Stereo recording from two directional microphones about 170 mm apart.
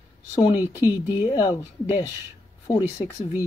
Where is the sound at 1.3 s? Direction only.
20° left (ahead or behind).